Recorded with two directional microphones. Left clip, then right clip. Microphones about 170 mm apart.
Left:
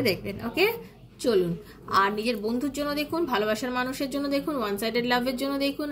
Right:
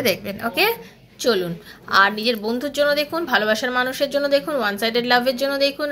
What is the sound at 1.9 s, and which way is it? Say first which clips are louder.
A woman's voice: right 7 dB; 10° left (ahead or behind).